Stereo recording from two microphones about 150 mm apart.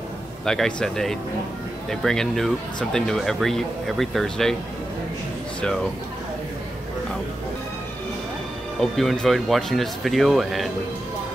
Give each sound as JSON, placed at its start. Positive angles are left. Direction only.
{"t": 0.5, "sound": "speech", "side_deg": 5}
{"t": 8.9, "sound": "speech", "side_deg": 0}